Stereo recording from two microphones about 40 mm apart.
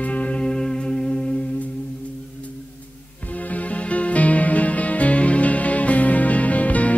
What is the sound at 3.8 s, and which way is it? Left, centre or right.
Music, left.